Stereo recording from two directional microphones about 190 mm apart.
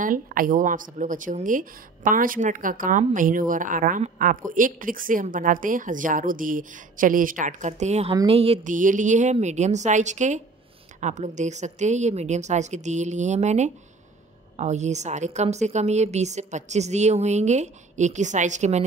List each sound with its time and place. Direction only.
0.0 s a woman's voice: 45° right (ahead or behind)